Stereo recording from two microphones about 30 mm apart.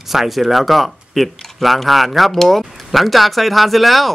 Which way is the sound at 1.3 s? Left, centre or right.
Centre.